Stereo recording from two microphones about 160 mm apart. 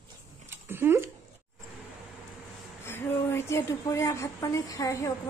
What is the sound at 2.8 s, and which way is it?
A woman's voice, 15° left (ahead or behind).